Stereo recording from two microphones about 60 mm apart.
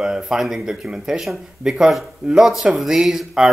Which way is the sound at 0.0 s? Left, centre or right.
Centre.